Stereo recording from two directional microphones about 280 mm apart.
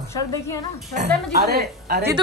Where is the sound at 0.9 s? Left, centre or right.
Right.